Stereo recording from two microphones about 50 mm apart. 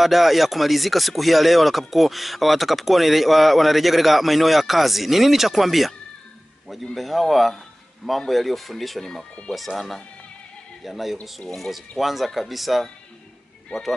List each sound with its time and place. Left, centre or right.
0.0 s speech: centre
13.7 s speech: centre